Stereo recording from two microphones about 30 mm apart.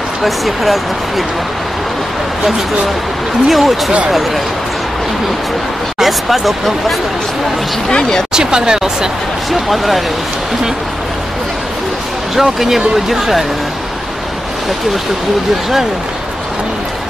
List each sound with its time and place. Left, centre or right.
0.2 s speech: centre
3.4 s speech: centre
5.9 s speech: centre
8.3 s speech: right
9.5 s speech: centre
12.4 s speech: centre